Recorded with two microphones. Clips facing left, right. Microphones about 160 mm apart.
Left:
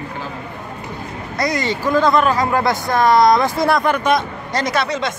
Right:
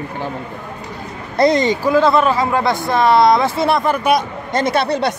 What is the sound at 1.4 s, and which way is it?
Speech, 25° right (ahead or behind).